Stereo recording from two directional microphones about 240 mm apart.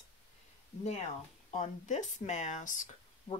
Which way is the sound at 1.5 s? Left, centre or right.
Left.